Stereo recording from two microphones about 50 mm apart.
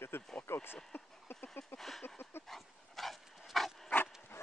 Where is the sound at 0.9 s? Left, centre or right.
Left.